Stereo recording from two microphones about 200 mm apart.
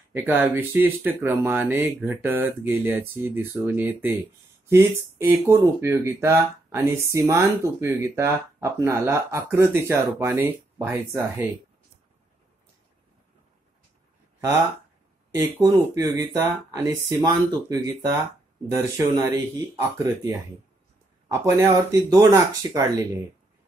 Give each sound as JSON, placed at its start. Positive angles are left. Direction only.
{"t": 0.1, "sound": "speech", "side_deg": -10}
{"t": 15.6, "sound": "speech", "side_deg": -15}